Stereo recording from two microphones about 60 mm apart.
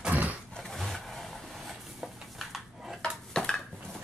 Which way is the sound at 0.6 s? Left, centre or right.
Centre.